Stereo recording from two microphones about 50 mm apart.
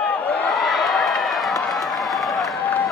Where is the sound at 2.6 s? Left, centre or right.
Left.